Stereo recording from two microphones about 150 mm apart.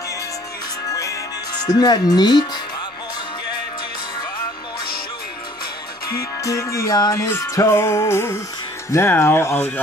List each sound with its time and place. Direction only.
0.8 s music: 20° left (ahead or behind)
6.4 s music: 20° left (ahead or behind)
8.9 s speech: 15° left (ahead or behind)